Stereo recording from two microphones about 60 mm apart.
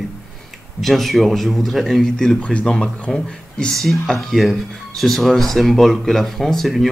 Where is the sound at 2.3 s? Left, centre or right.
Left.